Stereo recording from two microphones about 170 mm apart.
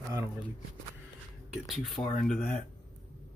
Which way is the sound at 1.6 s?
Centre (ahead or behind).